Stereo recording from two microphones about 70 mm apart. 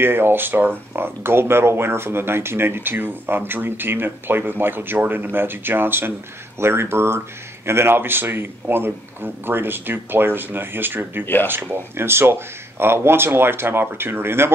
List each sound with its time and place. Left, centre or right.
0.0 s speech: right